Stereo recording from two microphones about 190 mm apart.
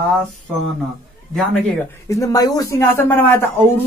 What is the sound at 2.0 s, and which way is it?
Speech, 15° left (ahead or behind).